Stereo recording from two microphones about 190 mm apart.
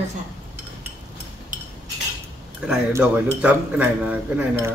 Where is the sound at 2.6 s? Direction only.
5° right (ahead or behind).